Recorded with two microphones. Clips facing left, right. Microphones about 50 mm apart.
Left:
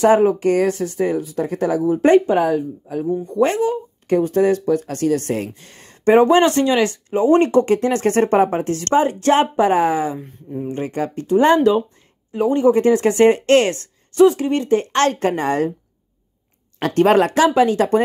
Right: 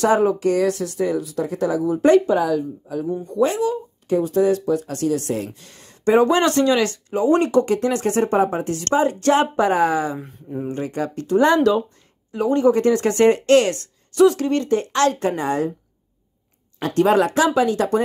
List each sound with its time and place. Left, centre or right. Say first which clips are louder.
0.0 s speech: left 3 dB; left
8.1 s speech: left 4 dB; left
10.1 s speech: left 1 dB; centre
10.7 s speech: left 2 dB; left
14.9 s a woman's voice: left 2 dB; left
16.9 s a woman's voice: left 2 dB; left
17.6 s speech: left 3 dB; left